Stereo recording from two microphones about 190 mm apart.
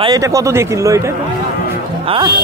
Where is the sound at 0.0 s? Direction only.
20° right (ahead or behind).